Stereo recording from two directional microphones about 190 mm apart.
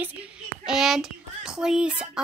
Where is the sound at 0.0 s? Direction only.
5° right (ahead or behind).